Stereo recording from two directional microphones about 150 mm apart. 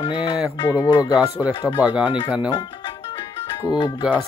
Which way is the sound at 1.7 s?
10° right (ahead or behind).